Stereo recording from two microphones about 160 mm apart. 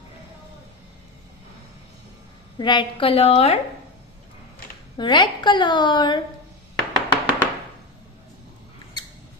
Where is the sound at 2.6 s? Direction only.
30° left (ahead or behind).